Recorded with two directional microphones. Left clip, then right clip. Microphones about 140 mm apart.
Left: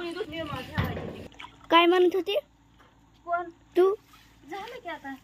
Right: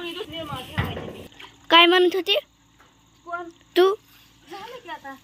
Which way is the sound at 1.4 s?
5° left (ahead or behind).